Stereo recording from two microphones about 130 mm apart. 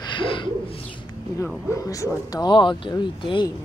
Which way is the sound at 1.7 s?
20° left (ahead or behind).